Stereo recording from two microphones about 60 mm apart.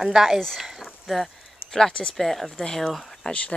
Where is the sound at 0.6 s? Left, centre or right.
Centre.